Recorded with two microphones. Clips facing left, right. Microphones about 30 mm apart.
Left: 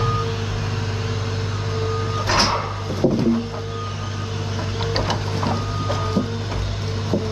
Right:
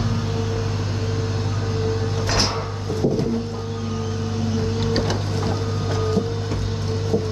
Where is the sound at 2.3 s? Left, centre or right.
Centre.